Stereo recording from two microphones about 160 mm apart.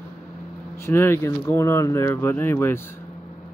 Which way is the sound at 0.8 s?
15° left (ahead or behind).